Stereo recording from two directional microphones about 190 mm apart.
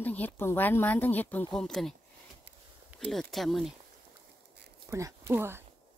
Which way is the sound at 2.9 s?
5° right (ahead or behind).